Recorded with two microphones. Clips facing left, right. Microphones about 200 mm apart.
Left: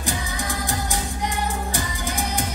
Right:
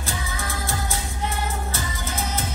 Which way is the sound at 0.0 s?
15° left (ahead or behind).